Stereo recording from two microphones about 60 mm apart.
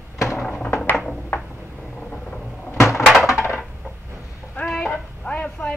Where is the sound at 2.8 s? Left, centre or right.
Left.